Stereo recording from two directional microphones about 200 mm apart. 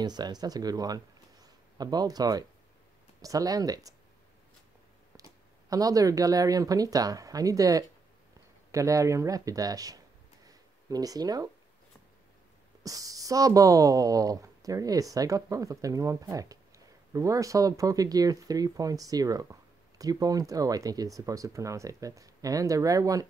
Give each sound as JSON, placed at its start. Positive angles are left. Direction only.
{"t": 0.0, "sound": "speech", "side_deg": -20}
{"t": 5.7, "sound": "speech", "side_deg": -15}
{"t": 12.8, "sound": "speech", "side_deg": -15}